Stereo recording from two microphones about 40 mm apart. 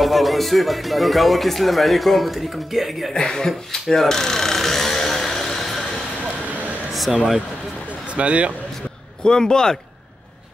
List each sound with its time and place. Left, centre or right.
0.0 s speech: centre
3.1 s speech: centre
3.9 s a sound: centre
7.1 s speech: centre
8.1 s speech: right
9.2 s speech: centre